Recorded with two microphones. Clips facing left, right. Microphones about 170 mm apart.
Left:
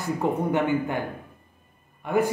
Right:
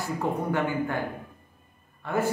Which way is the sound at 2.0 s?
15° left (ahead or behind).